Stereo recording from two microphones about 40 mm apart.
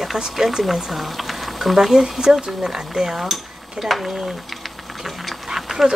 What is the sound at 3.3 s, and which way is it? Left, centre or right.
Dishes, centre.